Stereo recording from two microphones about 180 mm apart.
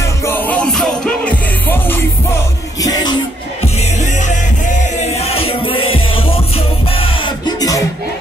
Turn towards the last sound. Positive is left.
turn(degrees=20)  # may be behind; listen again after turning